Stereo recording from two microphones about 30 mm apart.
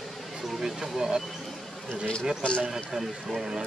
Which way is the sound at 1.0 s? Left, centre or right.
Centre.